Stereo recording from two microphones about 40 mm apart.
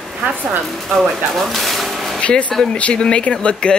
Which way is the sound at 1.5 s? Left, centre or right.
Centre.